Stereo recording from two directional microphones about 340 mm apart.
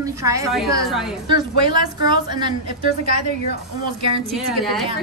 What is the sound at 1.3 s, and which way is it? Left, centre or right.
A woman's voice, centre.